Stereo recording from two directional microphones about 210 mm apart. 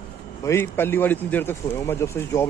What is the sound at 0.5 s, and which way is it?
Speech, 10° left (ahead or behind).